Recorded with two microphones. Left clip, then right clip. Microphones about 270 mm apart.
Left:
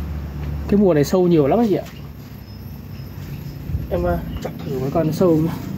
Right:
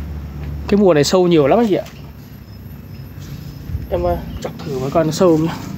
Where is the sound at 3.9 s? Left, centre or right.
Centre.